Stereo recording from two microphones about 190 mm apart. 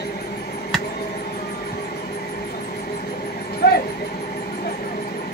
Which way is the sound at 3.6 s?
60° left (ahead or behind).